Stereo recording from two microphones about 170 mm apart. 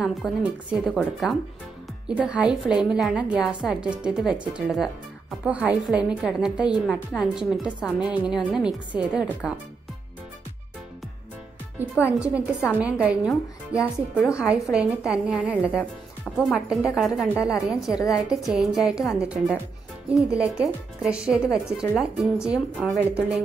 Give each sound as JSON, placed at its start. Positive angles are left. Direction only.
{"t": 0.0, "sound": "a woman's voice", "side_deg": 0}
{"t": 12.0, "sound": "a woman's voice", "side_deg": -10}
{"t": 17.9, "sound": "a woman's voice", "side_deg": 20}
{"t": 18.3, "sound": "speech", "side_deg": -5}